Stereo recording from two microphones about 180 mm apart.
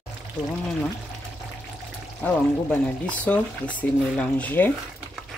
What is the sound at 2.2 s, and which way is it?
Speech, 5° left (ahead or behind).